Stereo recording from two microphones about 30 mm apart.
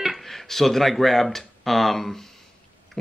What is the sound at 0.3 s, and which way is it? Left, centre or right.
Speech, centre.